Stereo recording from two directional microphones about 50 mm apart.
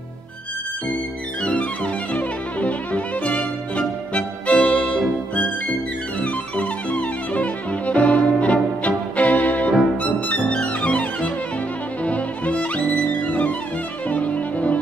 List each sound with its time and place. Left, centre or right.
1.4 s music: left
14.0 s violin: left